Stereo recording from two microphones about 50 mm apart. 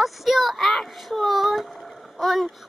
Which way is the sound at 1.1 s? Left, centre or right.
Centre.